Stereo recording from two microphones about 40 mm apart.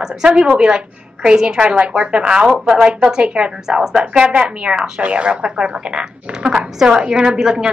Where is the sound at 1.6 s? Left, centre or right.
Right.